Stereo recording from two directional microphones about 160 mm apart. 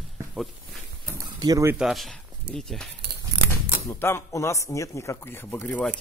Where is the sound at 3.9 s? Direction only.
15° left (ahead or behind).